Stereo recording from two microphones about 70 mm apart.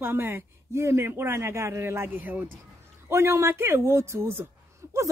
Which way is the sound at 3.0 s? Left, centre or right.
Right.